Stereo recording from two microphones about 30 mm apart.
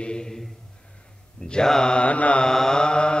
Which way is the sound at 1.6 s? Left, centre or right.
Centre.